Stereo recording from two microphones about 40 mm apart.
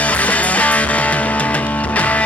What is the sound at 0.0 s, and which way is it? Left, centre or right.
Music, left.